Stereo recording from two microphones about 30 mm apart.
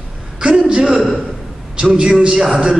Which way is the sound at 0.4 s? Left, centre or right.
Right.